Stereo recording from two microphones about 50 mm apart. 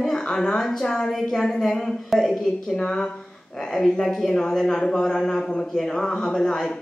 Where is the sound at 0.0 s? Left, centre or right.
Centre.